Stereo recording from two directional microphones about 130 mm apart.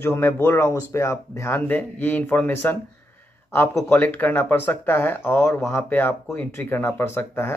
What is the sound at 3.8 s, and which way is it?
Speech, 15° left (ahead or behind).